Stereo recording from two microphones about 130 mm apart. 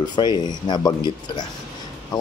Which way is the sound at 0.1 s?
35° left (ahead or behind).